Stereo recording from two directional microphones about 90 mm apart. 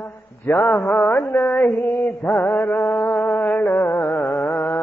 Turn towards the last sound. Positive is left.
turn(degrees=20)  # may be behind; listen again after turning